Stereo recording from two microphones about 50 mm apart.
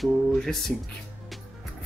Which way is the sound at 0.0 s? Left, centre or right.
Centre.